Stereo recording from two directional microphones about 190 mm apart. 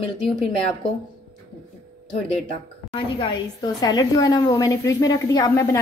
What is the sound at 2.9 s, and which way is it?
A woman's voice, 25° left (ahead or behind).